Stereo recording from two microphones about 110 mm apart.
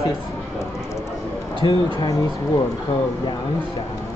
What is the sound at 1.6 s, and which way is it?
Speech, 35° left (ahead or behind).